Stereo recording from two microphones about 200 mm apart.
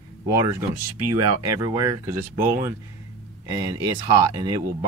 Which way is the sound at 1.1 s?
15° right (ahead or behind).